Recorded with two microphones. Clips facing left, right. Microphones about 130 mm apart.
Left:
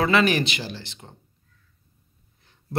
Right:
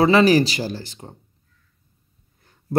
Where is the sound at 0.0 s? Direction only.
35° right (ahead or behind).